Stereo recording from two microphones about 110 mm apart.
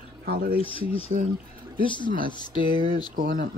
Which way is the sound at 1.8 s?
45° left (ahead or behind).